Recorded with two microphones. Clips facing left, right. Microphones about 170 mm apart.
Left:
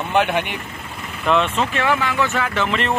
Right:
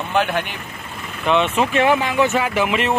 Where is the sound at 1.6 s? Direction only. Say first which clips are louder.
Right 3 dB; 15° right (ahead or behind).